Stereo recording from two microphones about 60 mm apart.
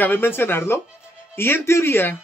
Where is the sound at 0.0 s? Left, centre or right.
Left.